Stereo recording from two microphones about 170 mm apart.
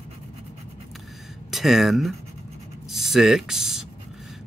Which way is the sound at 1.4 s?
Centre (ahead or behind).